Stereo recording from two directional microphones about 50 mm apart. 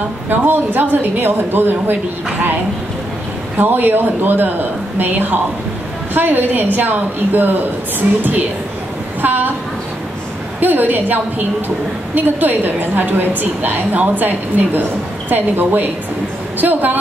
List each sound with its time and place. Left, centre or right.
0.3 s a woman's voice: right
3.5 s a woman's voice: right
10.6 s a woman's voice: right